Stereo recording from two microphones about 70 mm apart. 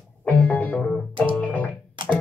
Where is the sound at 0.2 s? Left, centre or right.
Centre.